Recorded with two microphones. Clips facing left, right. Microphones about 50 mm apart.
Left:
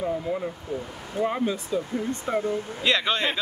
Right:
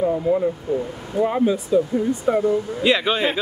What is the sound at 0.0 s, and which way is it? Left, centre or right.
Speech, centre.